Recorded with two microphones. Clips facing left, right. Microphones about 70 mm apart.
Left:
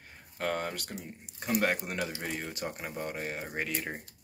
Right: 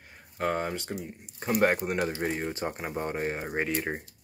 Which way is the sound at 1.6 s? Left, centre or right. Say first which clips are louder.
Right 6 dB; right.